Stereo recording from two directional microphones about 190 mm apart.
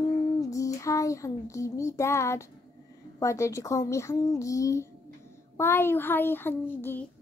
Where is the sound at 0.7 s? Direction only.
15° left (ahead or behind).